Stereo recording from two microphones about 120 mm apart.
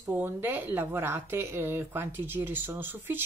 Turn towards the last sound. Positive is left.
turn(degrees=-20)  # may be behind; listen again after turning